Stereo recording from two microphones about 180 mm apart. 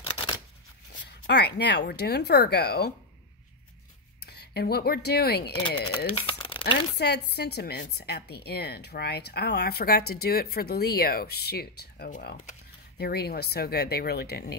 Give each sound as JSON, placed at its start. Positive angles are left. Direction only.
{"t": 0.0, "sound": "shuffling cards", "side_deg": 30}
{"t": 1.0, "sound": "a woman's voice", "side_deg": 65}
{"t": 4.2, "sound": "speech", "side_deg": 65}
{"t": 5.6, "sound": "speech", "side_deg": 25}
{"t": 6.2, "sound": "crumpling", "side_deg": 30}
{"t": 7.0, "sound": "a woman's voice", "side_deg": 65}